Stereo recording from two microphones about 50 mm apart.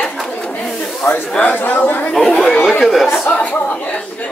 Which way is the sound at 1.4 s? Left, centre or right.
Left.